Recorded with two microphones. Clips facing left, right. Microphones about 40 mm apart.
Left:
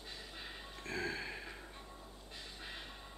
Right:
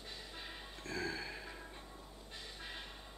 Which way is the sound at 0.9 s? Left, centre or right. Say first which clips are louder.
Left 1 dB; left.